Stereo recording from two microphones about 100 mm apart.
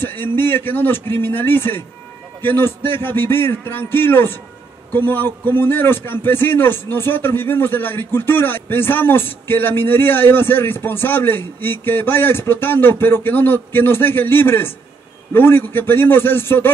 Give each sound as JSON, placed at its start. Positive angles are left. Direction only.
{"t": 0.0, "sound": "a man's voice", "side_deg": 20}